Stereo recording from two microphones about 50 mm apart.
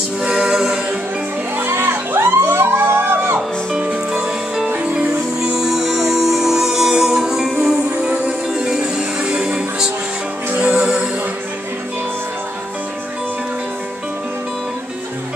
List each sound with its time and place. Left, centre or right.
0.2 s music: centre
1.8 s music: right
3.8 s music: right